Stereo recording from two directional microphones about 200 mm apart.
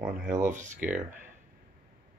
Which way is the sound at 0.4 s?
40° right (ahead or behind).